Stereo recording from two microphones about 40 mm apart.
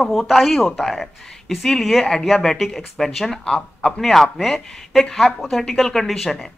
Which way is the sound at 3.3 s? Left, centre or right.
Centre.